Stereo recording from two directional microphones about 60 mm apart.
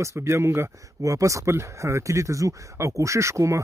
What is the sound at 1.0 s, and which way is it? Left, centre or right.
Speech, right.